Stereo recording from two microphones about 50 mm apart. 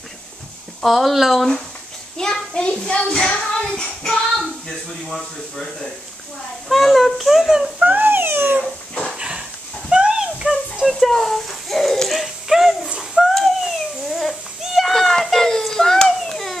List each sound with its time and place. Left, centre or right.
0.8 s a child's voice: centre
2.1 s a child's voice: centre
7.8 s speech: right
9.1 s dog: centre
9.8 s a sound: centre
10.9 s a child's voice: centre
13.1 s owl: centre
14.6 s children playing: centre